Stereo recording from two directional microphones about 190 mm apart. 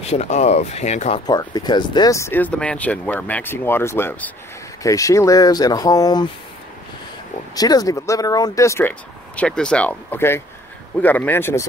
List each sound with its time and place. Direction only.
0.0 s speech: 35° left (ahead or behind)
1.2 s speech: 20° left (ahead or behind)
7.5 s speech: 20° left (ahead or behind)